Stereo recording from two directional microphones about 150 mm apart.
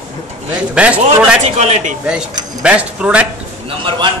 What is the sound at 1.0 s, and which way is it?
Speech, 50° right (ahead or behind).